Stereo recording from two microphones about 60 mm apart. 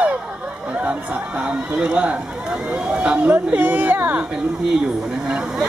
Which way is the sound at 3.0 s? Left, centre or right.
Right.